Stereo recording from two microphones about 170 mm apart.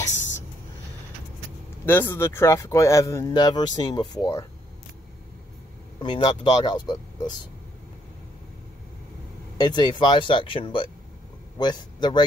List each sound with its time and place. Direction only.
1.9 s speech: 10° left (ahead or behind)
5.9 s speech: 30° left (ahead or behind)
9.6 s a man's voice: 25° left (ahead or behind)